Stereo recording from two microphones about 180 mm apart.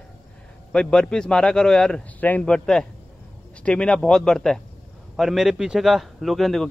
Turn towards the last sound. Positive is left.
turn(degrees=0)  # may be behind; listen again after turning